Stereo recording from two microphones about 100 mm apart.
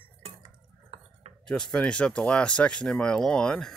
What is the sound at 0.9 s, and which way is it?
Cutlery, 90° right.